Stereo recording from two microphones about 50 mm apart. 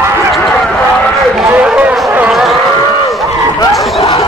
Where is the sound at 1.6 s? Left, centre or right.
Right.